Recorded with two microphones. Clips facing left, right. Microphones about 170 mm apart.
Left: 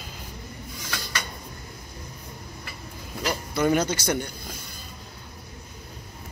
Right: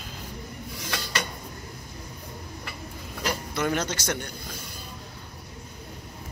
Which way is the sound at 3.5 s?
5° left (ahead or behind).